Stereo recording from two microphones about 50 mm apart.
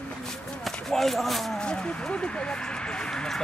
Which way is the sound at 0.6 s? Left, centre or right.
Centre.